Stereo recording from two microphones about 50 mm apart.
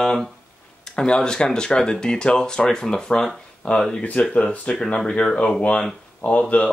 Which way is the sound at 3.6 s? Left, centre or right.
Left.